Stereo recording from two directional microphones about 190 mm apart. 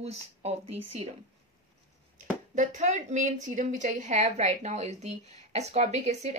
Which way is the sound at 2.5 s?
40° right (ahead or behind).